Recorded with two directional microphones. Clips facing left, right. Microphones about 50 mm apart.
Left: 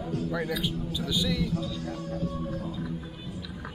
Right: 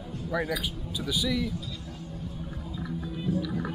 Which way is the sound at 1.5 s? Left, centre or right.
Left.